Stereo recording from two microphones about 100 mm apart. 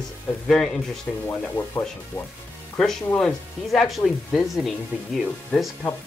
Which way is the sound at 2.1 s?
30° left (ahead or behind).